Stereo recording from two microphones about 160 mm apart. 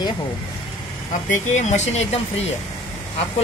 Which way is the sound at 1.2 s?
50° left (ahead or behind).